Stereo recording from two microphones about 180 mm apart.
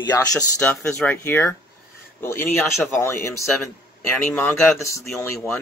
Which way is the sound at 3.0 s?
15° left (ahead or behind).